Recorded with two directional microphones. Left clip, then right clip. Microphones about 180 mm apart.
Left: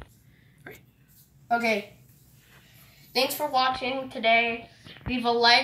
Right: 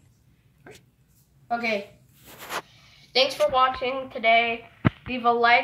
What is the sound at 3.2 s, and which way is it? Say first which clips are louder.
A woman's voice: right 4 dB; 5° right (ahead or behind).